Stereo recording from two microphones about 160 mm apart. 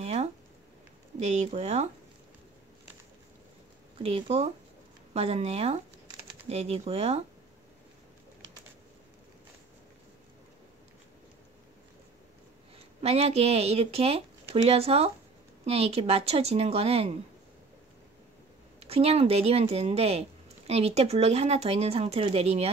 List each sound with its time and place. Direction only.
0.0 s a sound: 40° right (ahead or behind)
1.2 s speech: 45° right (ahead or behind)
4.0 s speech: 35° right (ahead or behind)
12.7 s speech: 40° right (ahead or behind)
18.8 s speech: 40° right (ahead or behind)